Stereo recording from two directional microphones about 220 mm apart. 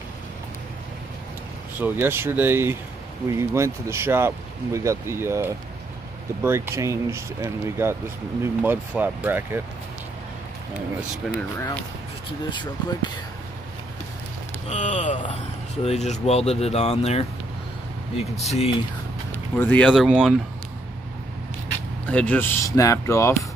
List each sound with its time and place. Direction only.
1.8 s speech: 10° right (ahead or behind)
11.5 s speech: 10° left (ahead or behind)
14.7 s speech: 35° left (ahead or behind)
19.3 s speech: 10° left (ahead or behind)
22.0 s speech: 5° left (ahead or behind)